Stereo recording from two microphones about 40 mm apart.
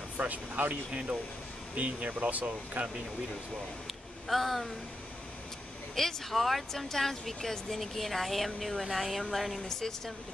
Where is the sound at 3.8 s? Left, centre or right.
Centre.